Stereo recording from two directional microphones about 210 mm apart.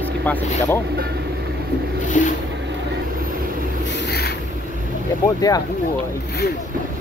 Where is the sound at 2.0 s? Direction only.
35° left (ahead or behind).